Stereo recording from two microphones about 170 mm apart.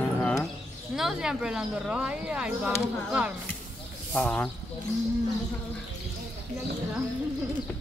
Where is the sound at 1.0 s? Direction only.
5° right (ahead or behind).